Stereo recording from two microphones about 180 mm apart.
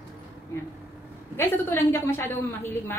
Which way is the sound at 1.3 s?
15° left (ahead or behind).